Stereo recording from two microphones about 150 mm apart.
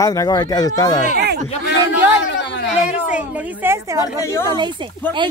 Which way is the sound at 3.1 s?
15° right (ahead or behind).